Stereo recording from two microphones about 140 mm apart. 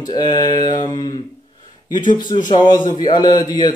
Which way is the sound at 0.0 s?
30° left (ahead or behind).